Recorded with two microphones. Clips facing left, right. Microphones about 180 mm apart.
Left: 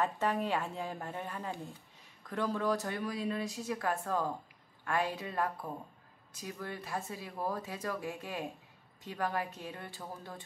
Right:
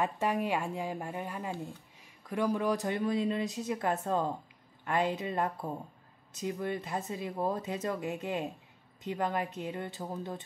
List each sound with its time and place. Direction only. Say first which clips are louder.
0.0 s speech: right 2 dB; 10° right (ahead or behind)